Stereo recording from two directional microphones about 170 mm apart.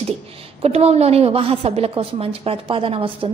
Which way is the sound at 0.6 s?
35° right (ahead or behind).